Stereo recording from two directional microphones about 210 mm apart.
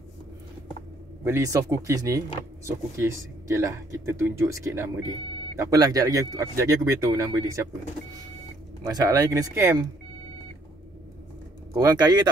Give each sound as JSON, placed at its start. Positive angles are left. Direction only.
{"t": 1.2, "sound": "speech", "side_deg": -15}
{"t": 8.8, "sound": "speech", "side_deg": -20}
{"t": 11.7, "sound": "speech", "side_deg": -15}